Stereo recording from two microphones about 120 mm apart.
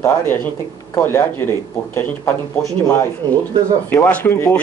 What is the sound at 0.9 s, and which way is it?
Speech, 25° left (ahead or behind).